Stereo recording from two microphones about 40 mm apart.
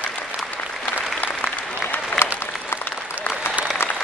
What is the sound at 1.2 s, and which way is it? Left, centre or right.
Applause, left.